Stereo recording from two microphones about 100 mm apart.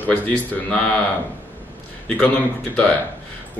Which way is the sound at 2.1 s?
15° left (ahead or behind).